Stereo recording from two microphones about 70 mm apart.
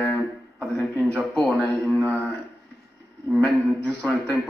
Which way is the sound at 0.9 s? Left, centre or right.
Right.